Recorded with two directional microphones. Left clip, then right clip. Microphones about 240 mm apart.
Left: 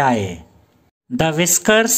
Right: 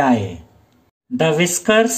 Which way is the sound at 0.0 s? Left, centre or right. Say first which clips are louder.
Even; left.